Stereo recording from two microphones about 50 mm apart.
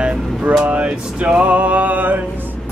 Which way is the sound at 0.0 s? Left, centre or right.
Centre.